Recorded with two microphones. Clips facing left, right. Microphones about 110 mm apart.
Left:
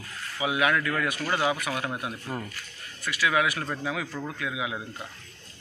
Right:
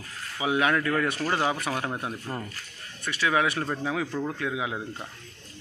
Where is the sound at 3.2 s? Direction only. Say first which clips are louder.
Right 1 dB; 30° right (ahead or behind).